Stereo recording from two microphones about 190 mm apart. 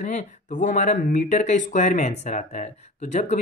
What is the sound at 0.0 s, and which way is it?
Speech, 40° left (ahead or behind).